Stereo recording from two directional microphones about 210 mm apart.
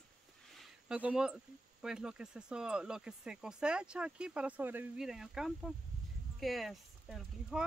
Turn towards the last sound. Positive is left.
turn(degrees=0)  # may be behind; listen again after turning